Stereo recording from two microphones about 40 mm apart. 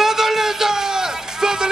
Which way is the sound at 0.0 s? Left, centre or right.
Centre.